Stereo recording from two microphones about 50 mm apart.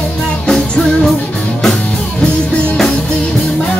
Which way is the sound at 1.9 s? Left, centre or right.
Left.